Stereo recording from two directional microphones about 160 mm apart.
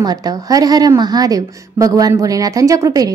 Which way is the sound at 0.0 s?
25° right (ahead or behind).